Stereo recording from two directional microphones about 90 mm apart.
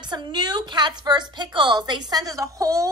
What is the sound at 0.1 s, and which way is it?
A woman's voice, 55° right (ahead or behind).